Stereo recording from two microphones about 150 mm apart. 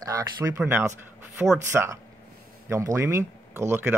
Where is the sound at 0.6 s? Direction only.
10° right (ahead or behind).